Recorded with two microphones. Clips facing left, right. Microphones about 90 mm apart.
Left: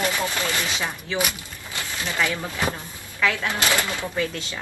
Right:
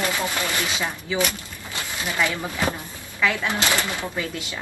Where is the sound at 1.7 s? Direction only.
20° right (ahead or behind).